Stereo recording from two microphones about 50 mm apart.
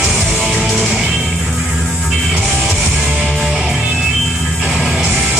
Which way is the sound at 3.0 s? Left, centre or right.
Right.